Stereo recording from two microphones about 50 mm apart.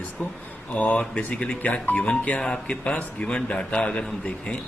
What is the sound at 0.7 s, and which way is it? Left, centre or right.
A man's voice, left.